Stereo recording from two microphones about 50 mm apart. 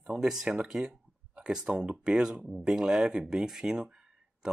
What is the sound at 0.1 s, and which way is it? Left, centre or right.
Speech, centre.